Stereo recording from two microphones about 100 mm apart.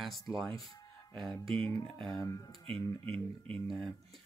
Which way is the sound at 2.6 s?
70° right (ahead or behind).